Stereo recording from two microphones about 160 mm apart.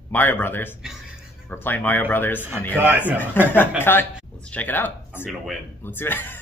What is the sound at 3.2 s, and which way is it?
Speech, 15° left (ahead or behind).